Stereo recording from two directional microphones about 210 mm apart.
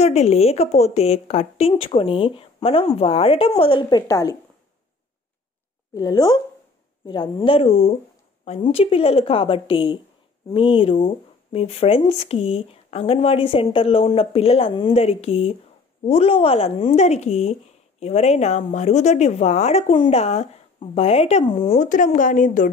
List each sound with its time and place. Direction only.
0.0 s speech: 30° left (ahead or behind)
5.9 s speech: 20° left (ahead or behind)
21.7 s speech: 40° left (ahead or behind)